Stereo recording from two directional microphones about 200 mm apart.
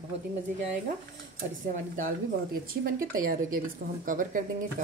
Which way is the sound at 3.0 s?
45° right (ahead or behind).